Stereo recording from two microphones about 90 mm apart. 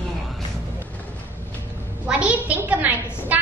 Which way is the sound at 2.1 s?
15° right (ahead or behind).